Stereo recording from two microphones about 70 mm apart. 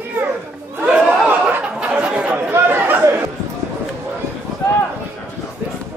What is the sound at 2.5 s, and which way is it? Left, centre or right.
Chatter, right.